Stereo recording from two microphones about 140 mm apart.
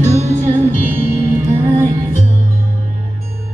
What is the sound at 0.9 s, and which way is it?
Music, 15° right (ahead or behind).